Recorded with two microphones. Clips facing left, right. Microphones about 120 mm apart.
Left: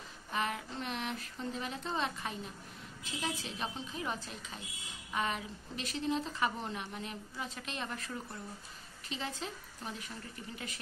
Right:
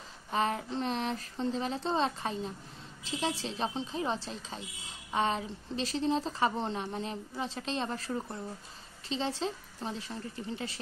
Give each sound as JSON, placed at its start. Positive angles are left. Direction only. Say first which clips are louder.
{"t": 0.3, "sound": "speech", "louder": "right 6 dB", "side_deg": -35}